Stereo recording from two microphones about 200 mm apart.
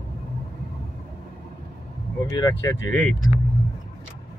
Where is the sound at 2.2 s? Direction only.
20° left (ahead or behind).